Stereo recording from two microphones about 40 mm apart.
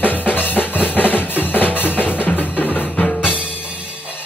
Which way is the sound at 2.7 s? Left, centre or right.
Left.